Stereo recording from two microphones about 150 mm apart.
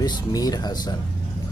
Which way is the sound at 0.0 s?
25° left (ahead or behind).